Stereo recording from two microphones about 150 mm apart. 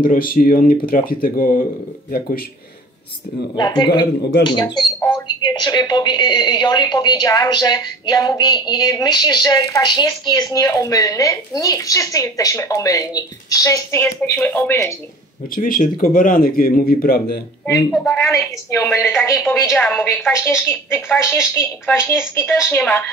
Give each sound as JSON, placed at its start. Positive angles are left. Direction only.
{"t": 0.0, "sound": "speech", "side_deg": 70}
{"t": 3.5, "sound": "speech", "side_deg": 30}
{"t": 15.5, "sound": "speech", "side_deg": 70}
{"t": 18.1, "sound": "a woman's voice", "side_deg": 15}